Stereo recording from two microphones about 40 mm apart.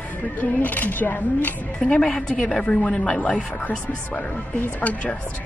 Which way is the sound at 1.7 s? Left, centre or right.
Left.